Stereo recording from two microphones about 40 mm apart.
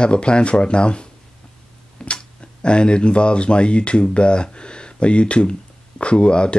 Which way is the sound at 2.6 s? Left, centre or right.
Left.